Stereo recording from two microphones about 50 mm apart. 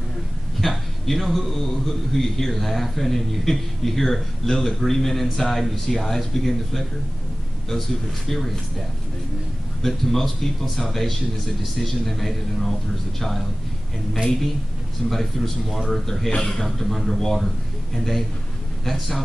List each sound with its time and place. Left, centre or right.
0.6 s a man's voice: centre
9.8 s a man's voice: centre
14.1 s a man's voice: centre
16.3 s a man's voice: left
16.5 s a man's voice: centre